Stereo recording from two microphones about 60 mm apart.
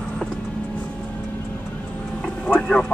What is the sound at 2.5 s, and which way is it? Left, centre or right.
Speech, centre.